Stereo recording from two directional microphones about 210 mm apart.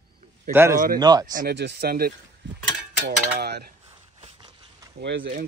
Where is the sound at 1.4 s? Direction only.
50° right (ahead or behind).